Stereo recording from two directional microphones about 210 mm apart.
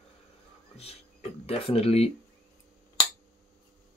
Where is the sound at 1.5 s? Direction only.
30° left (ahead or behind).